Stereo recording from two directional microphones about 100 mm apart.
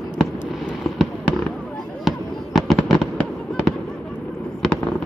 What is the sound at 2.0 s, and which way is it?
Fireworks, centre (ahead or behind).